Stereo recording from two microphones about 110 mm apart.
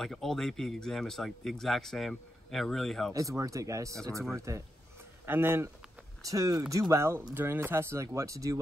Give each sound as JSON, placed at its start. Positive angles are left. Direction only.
{"t": 0.0, "sound": "speech", "side_deg": 5}
{"t": 3.1, "sound": "speech", "side_deg": -30}